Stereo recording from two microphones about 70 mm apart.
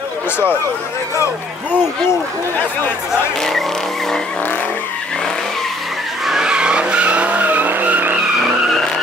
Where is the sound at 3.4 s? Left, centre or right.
Centre.